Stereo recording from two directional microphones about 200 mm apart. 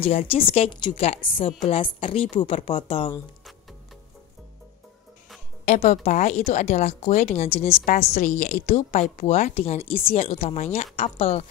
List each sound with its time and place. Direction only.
0.0 s speech: 30° left (ahead or behind)
5.7 s speech: 35° left (ahead or behind)